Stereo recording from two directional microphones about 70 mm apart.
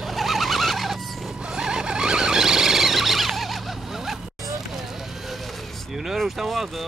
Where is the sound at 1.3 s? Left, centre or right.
Centre.